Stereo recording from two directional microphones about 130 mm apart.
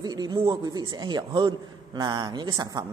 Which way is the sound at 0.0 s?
30° right (ahead or behind).